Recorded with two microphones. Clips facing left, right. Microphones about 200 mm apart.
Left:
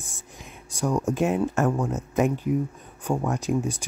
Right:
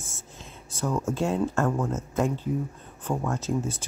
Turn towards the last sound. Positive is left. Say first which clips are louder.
# left 3 dB
turn(degrees=15)  # may be behind; listen again after turning